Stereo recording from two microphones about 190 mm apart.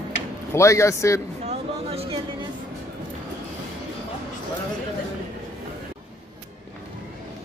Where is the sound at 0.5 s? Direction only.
15° left (ahead or behind).